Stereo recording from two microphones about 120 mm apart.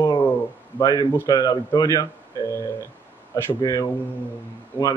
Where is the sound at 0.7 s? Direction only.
35° left (ahead or behind).